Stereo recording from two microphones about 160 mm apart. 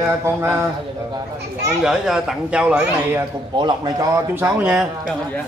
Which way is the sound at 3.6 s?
25° right (ahead or behind).